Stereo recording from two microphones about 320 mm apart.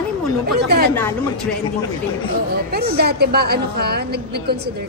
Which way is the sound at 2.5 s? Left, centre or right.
Right.